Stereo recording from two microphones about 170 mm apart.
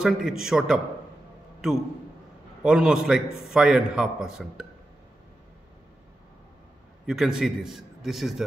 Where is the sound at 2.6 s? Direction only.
5° right (ahead or behind).